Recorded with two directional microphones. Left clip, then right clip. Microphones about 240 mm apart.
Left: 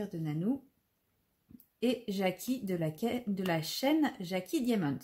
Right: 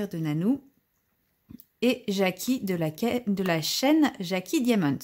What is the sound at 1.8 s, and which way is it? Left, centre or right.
Speech, right.